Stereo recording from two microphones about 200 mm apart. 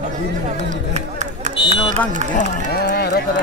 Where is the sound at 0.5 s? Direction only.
35° right (ahead or behind).